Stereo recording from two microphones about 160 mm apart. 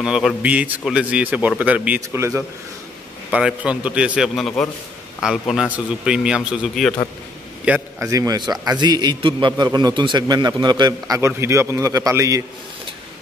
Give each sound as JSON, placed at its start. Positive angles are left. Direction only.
{"t": 0.0, "sound": "a man's voice", "side_deg": 0}
{"t": 3.3, "sound": "a man's voice", "side_deg": -5}
{"t": 7.6, "sound": "a man's voice", "side_deg": -10}
{"t": 8.1, "sound": "a man's voice", "side_deg": -20}